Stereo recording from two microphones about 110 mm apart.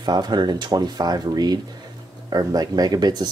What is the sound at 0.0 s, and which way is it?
Speech, 40° right (ahead or behind).